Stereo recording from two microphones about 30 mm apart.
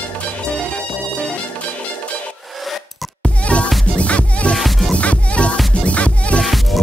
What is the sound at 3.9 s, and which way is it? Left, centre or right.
Music, left.